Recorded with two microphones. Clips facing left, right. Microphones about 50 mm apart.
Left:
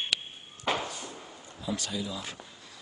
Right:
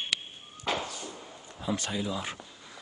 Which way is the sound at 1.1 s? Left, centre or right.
Centre.